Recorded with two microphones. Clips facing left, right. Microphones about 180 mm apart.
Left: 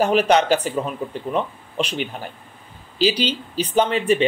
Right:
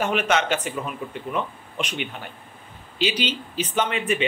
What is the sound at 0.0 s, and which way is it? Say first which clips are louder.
Speech: left 6 dB; 35° left (ahead or behind).